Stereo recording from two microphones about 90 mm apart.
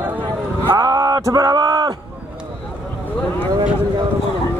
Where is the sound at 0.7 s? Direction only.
45° right (ahead or behind).